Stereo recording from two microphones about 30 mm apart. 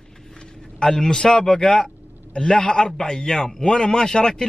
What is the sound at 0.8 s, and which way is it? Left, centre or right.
A man's voice, left.